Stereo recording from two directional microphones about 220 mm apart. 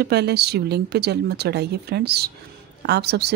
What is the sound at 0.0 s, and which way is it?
Speech, 50° right (ahead or behind).